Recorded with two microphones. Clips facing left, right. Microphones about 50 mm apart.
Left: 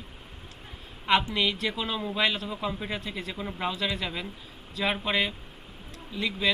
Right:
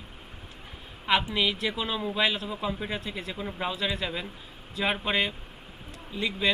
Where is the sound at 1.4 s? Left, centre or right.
Centre.